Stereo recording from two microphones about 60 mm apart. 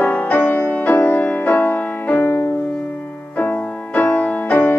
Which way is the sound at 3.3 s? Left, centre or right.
Left.